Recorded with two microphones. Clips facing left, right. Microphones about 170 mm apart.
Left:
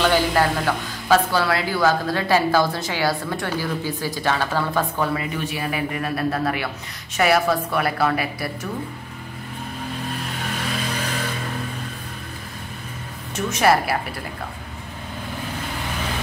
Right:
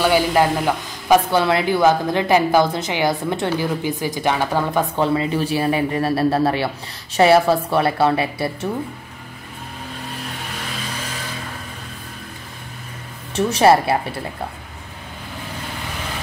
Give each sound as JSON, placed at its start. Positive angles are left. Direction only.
{"t": 0.0, "sound": "a woman's voice", "side_deg": -15}
{"t": 4.9, "sound": "a man's voice", "side_deg": -25}
{"t": 13.3, "sound": "a woman's voice", "side_deg": -30}